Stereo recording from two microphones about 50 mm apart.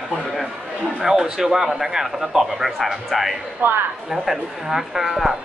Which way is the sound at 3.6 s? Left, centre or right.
Right.